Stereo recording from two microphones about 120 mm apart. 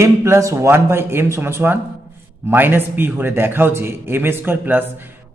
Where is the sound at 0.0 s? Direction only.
25° right (ahead or behind).